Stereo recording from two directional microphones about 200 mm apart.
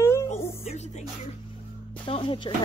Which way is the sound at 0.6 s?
35° left (ahead or behind).